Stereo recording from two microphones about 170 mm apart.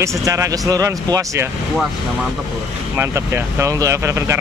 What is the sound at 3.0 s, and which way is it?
Speech, 15° right (ahead or behind).